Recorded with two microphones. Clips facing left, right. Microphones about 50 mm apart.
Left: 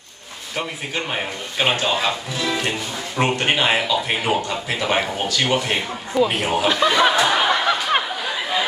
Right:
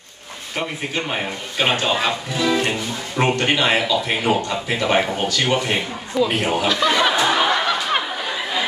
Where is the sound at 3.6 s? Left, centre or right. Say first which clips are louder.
Right 1 dB; centre.